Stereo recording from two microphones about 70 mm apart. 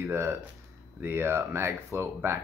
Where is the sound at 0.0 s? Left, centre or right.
Right.